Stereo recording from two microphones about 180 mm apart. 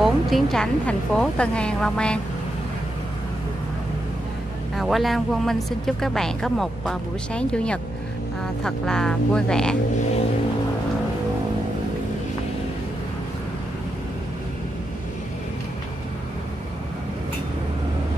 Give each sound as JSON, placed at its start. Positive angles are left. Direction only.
{"t": 0.0, "sound": "speech", "side_deg": 0}
{"t": 4.7, "sound": "speech", "side_deg": 0}